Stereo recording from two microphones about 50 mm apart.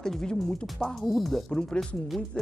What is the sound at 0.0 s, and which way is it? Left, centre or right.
Speech, centre.